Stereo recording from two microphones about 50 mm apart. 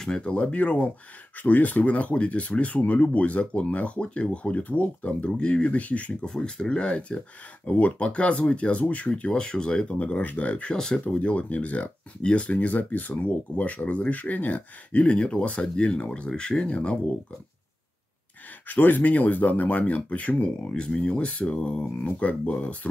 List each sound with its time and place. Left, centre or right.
0.2 s speech: left
6.2 s speech: centre
18.7 s speech: left